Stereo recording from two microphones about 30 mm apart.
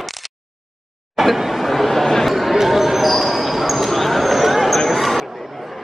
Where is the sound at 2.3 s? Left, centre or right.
Centre.